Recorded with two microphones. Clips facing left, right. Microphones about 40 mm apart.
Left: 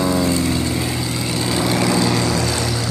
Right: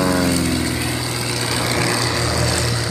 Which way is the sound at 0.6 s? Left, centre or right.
Right.